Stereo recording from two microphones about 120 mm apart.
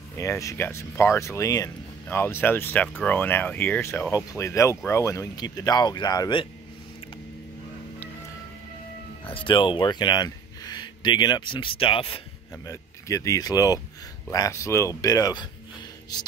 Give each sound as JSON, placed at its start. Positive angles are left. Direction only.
{"t": 0.2, "sound": "speech", "side_deg": 25}
{"t": 9.2, "sound": "speech", "side_deg": 45}
{"t": 12.6, "sound": "speech", "side_deg": 25}